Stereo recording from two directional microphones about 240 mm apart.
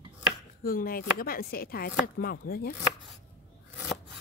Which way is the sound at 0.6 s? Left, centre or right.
Left.